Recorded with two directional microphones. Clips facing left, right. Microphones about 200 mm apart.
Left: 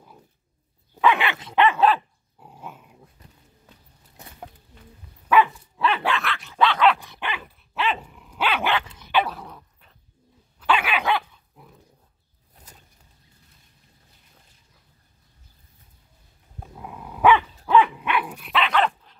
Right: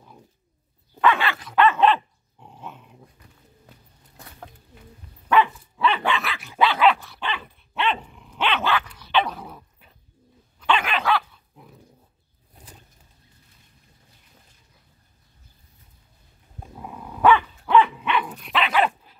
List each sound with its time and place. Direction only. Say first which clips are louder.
1.1 s dog: even; 20° left (ahead or behind)
5.3 s dog: left 1 dB; 5° left (ahead or behind)
7.0 s dog: right 1 dB; 15° left (ahead or behind)
8.7 s dog: right 1 dB; 25° left (ahead or behind)
9.1 s dog: even; 5° left (ahead or behind)
10.6 s dog: even; 10° left (ahead or behind)
16.7 s dog: right 1 dB; centre (ahead or behind)